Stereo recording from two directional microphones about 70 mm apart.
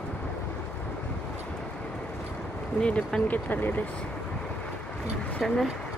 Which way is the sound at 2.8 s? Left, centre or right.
Centre.